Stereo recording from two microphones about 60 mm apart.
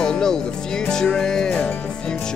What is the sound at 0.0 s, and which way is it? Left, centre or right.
Music, centre.